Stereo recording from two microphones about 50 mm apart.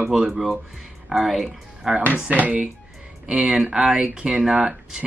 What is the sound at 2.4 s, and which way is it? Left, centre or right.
Speech, right.